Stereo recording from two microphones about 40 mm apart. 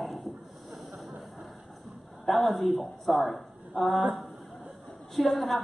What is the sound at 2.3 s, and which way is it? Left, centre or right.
Speech, centre.